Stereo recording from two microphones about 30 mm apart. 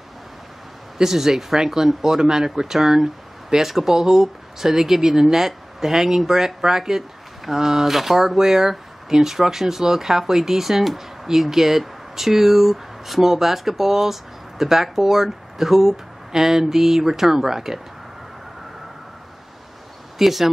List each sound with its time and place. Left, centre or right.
0.9 s speech: centre
20.2 s speech: centre